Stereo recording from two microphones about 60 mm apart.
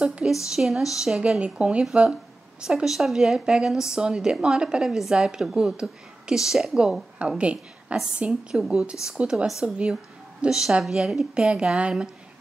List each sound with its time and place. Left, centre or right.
0.0 s a woman's voice: centre
1.4 s a woman's voice: centre
9.5 s a woman's voice: centre